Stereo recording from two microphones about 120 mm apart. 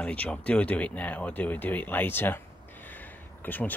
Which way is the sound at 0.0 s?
10° left (ahead or behind).